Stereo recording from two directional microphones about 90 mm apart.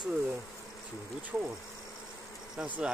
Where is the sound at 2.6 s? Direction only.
15° right (ahead or behind).